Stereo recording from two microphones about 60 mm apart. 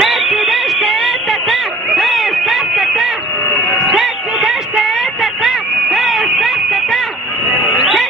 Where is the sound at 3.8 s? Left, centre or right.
Centre.